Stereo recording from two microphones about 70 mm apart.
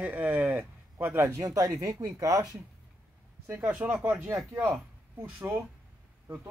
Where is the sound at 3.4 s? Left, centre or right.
Right.